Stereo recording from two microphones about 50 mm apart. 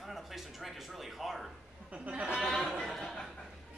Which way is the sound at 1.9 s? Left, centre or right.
Right.